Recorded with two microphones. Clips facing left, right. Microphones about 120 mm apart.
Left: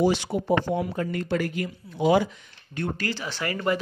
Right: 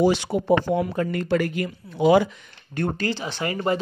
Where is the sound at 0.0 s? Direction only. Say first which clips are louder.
Right 3 dB; 80° right.